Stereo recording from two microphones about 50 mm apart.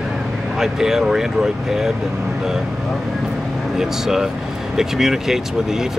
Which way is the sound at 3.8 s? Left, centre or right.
Centre.